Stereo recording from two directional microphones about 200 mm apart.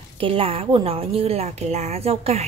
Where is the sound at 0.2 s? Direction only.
30° right (ahead or behind).